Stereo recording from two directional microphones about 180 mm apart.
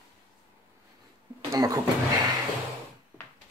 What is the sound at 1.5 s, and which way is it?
Speech, 20° right (ahead or behind).